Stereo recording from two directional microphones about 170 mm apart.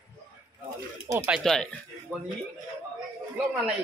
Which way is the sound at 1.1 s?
10° right (ahead or behind).